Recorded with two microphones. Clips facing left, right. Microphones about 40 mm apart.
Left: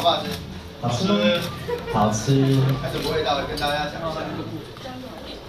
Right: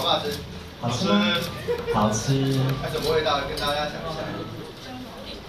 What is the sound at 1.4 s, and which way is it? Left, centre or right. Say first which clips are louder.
Speech: right 1 dB; left.